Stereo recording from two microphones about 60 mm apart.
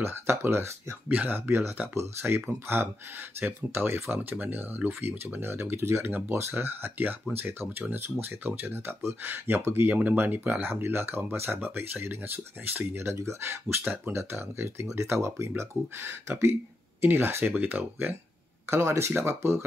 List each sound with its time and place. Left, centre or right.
0.0 s speech: right
1.0 s speech: right
1.8 s speech: right
2.6 s speech: right
6.0 s speech: right
10.7 s speech: right
18.7 s speech: right